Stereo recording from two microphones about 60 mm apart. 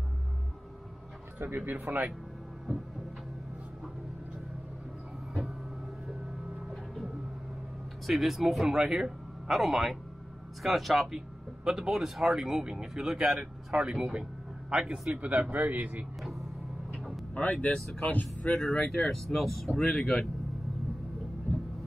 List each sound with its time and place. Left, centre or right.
1.6 s speech: right
8.1 s speech: centre; by 16.1 s right
16.2 s vehicle: centre
17.3 s speech: left
18.5 s speech: centre